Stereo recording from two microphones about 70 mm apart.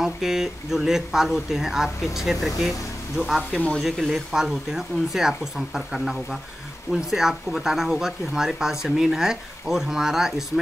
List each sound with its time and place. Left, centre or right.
0.0 s speech: centre
3.2 s speech: left
3.7 s speech: centre